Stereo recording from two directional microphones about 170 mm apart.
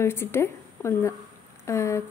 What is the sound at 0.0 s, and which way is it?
A woman's voice, 15° left (ahead or behind).